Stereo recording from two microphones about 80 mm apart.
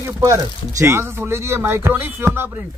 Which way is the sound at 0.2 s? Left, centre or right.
Right.